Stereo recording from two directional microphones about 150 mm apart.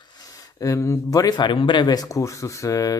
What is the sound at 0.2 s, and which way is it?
Speech, 25° left (ahead or behind).